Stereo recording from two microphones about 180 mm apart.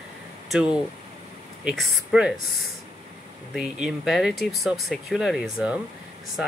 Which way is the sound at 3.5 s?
Centre (ahead or behind).